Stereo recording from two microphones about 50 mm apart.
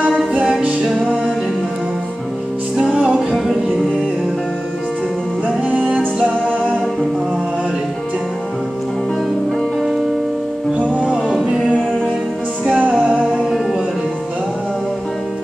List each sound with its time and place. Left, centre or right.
0.3 s music: right
2.8 s music: centre
3.3 s music: centre
5.7 s music: right
9.6 s music: centre
11.4 s music: centre
12.9 s music: right